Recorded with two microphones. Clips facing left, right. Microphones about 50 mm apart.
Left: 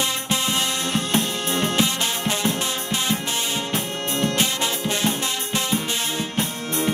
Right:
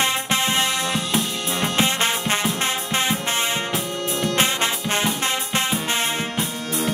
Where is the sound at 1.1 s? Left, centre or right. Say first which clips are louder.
Left 1 dB; right.